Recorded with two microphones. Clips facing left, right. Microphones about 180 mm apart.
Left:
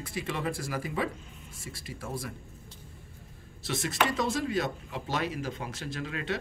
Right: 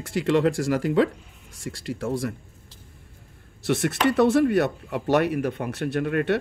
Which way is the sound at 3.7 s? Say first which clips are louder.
Right 8 dB; 70° right (ahead or behind).